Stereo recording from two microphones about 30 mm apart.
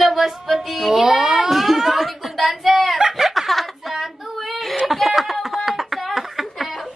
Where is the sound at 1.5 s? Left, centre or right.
Centre.